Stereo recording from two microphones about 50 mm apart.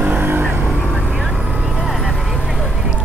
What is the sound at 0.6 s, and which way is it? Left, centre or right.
Vehicle, centre.